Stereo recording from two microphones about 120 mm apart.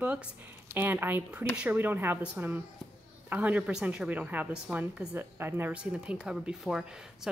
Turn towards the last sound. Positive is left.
turn(degrees=-5)  # may be behind; listen again after turning